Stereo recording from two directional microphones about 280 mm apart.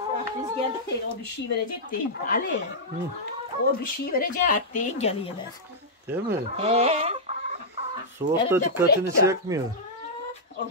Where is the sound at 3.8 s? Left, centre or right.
Left.